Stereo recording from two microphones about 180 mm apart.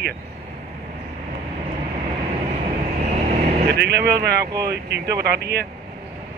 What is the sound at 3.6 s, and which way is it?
Speech, 65° right (ahead or behind).